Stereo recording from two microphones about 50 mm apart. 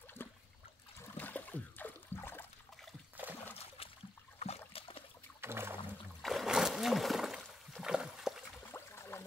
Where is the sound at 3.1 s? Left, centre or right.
Right.